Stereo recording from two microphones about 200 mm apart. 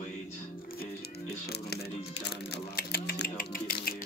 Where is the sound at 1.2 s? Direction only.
55° left (ahead or behind).